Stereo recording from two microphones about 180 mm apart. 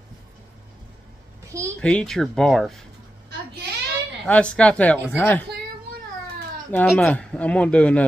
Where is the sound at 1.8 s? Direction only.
5° left (ahead or behind).